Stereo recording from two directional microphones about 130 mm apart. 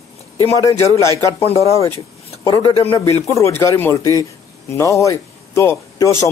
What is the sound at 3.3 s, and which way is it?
A man's voice, 20° left (ahead or behind).